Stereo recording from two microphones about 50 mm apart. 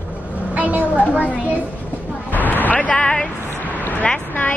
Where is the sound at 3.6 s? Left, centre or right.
Left.